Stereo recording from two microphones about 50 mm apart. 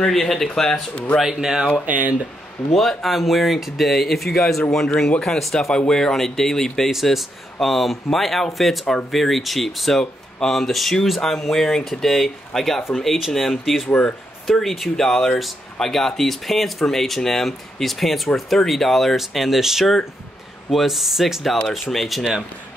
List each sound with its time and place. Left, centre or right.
0.0 s speech: centre
1.2 s speech: centre
1.9 s speech: right
2.7 s speech: centre
6.9 s speech: centre